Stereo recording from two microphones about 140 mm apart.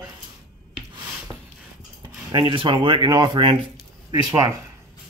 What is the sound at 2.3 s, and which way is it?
Speech, 35° right (ahead or behind).